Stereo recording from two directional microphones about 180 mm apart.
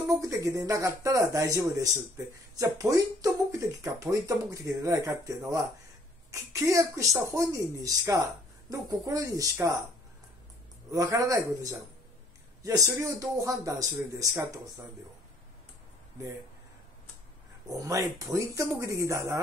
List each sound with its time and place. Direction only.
0.2 s speech: 20° right (ahead or behind)
10.9 s speech: 20° right (ahead or behind)
17.6 s speech: 20° right (ahead or behind)